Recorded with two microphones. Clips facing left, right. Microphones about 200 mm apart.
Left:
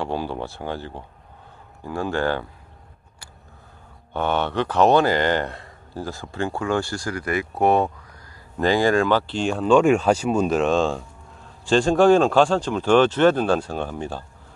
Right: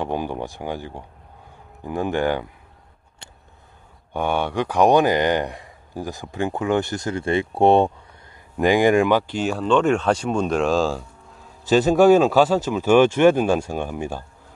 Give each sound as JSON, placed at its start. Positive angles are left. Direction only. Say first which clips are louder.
{"t": 0.0, "sound": "speech", "louder": "right 1 dB", "side_deg": -15}
{"t": 3.2, "sound": "a sound", "louder": "right 2 dB", "side_deg": -25}
{"t": 4.1, "sound": "speech", "louder": "even", "side_deg": -10}
{"t": 8.5, "sound": "speech", "louder": "right 2 dB", "side_deg": -15}
{"t": 9.7, "sound": "speech", "louder": "left 3 dB", "side_deg": 10}